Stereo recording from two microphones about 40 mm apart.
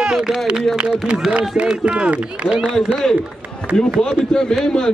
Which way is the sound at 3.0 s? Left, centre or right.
Centre.